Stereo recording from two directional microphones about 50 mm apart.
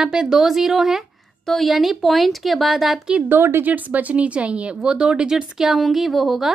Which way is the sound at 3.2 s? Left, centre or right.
Right.